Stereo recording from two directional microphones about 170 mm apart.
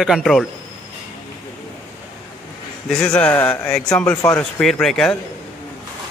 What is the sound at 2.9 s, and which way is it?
A man's voice, 5° left (ahead or behind).